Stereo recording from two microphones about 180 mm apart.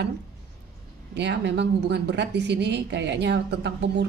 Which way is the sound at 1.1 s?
70° right (ahead or behind).